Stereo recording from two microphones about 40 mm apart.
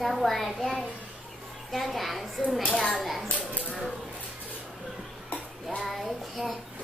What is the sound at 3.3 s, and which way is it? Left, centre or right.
Speech, left.